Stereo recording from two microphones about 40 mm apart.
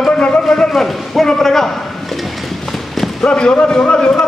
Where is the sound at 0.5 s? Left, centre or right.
Centre.